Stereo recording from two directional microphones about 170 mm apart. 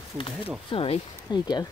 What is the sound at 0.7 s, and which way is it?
Speech, 30° left (ahead or behind).